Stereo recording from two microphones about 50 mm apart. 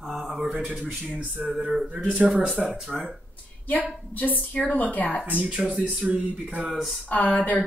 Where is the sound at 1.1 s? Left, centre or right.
Centre.